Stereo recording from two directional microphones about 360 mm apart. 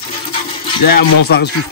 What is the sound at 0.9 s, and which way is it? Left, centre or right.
Speech, left.